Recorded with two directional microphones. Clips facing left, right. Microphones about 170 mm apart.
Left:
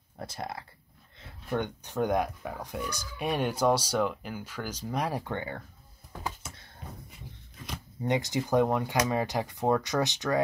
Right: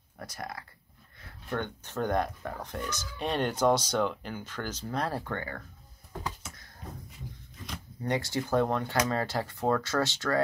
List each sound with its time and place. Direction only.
0.2 s speech: 25° left (ahead or behind)
8.0 s speech: 20° left (ahead or behind)